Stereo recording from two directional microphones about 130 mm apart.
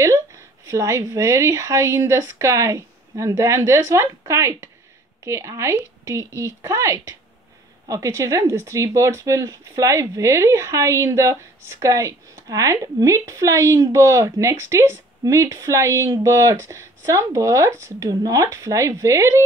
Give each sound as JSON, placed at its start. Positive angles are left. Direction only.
{"t": 0.7, "sound": "speech", "side_deg": -25}